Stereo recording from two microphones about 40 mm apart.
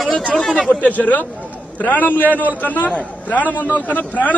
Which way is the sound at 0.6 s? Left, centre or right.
Left.